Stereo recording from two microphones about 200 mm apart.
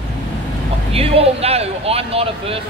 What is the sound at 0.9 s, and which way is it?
A man's voice, 30° right (ahead or behind).